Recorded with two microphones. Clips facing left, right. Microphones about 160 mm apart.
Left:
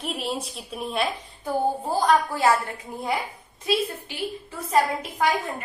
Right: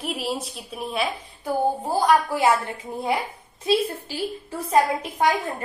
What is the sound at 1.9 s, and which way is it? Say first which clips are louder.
Speech: right 2 dB; 15° right (ahead or behind).